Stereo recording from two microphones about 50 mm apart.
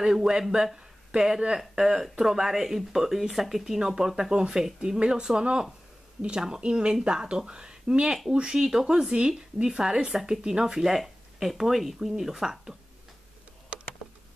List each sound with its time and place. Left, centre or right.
0.0 s speech: centre